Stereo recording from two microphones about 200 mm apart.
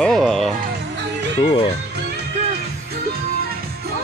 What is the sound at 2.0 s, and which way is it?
Music, 55° right (ahead or behind).